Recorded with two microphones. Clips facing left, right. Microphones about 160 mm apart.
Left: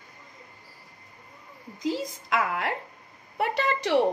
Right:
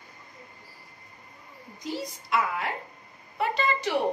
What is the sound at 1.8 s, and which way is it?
Speech, 90° left.